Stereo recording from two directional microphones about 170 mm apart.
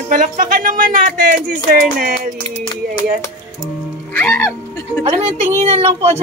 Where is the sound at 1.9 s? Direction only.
55° right (ahead or behind).